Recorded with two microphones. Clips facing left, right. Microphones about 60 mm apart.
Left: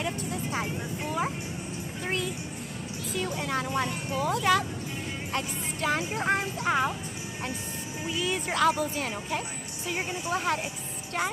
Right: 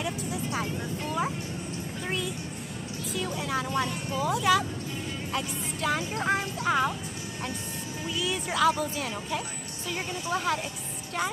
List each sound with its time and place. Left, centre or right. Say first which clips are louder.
0.0 s vehicle: even; centre
2.0 s a sound: left 1 dB; centre
3.2 s speech: left 1 dB; centre
4.2 s speech: even; centre
8.1 s a woman's voice: left 1 dB; left
8.5 s speech: right 1 dB; centre
8.7 s a woman's voice: left 1 dB; centre